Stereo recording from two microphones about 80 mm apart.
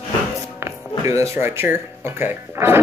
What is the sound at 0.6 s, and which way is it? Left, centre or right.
Music, right.